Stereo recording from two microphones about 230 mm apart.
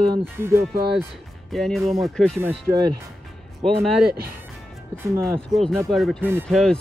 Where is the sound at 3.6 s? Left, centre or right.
Centre.